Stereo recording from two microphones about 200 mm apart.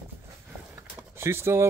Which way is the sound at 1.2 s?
15° right (ahead or behind).